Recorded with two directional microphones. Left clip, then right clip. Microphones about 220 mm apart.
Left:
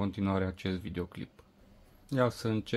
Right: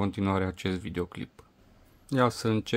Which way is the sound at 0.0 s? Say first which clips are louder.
Right 4 dB; 20° right (ahead or behind).